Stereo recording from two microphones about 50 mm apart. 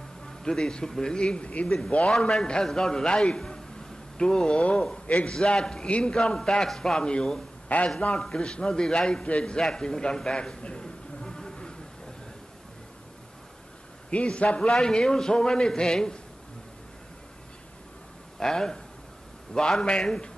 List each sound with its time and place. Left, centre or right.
0.4 s a man's voice: centre
2.0 s a man's voice: centre
5.0 s a man's voice: left
5.3 s a man's voice: centre
7.6 s a man's voice: left
8.1 s a man's voice: centre
11.2 s insect: centre
14.1 s a man's voice: left
14.7 s a man's voice: centre
18.4 s a man's voice: centre